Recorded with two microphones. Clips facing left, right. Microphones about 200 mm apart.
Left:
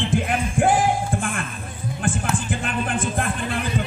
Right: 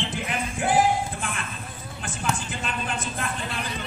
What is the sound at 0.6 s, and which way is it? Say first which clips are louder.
Music: left 8 dB; 50° left (ahead or behind).